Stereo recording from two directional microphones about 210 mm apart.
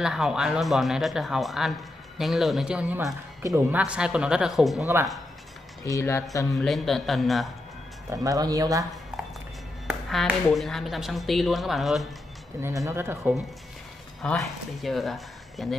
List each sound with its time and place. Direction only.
0.0 s speech: centre (ahead or behind)
5.9 s speech: 15° left (ahead or behind)
6.6 s speech: centre (ahead or behind)
8.1 s speech: 15° right (ahead or behind)
9.8 s speech: centre (ahead or behind)
12.5 s speech: 15° right (ahead or behind)
14.2 s speech: centre (ahead or behind)